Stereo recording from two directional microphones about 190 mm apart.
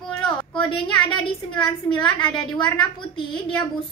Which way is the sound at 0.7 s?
25° left (ahead or behind).